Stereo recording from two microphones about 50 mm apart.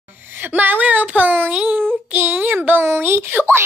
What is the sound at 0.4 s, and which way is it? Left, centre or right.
Speech, right.